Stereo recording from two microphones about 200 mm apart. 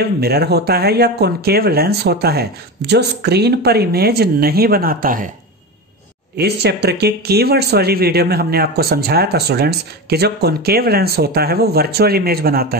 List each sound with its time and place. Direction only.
0.2 s speech: 50° right (ahead or behind)
6.3 s speech: 55° right (ahead or behind)